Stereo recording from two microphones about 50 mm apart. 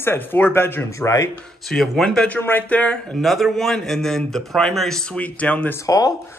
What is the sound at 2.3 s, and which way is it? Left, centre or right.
Speech, left.